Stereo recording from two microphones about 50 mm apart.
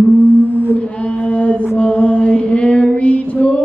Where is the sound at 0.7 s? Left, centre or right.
Left.